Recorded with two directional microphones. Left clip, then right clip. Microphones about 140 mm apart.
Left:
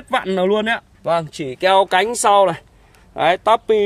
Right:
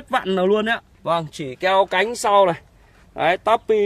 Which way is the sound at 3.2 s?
10° left (ahead or behind).